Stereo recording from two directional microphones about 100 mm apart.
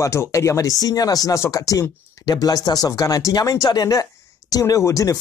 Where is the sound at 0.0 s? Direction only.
30° left (ahead or behind).